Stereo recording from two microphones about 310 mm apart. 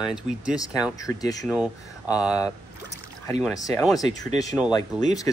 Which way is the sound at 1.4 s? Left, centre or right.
Centre.